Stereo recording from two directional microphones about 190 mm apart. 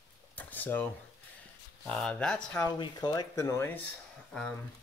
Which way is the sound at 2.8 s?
20° left (ahead or behind).